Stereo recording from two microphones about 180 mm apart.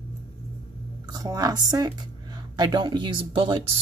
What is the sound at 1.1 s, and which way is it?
Speech, 20° right (ahead or behind).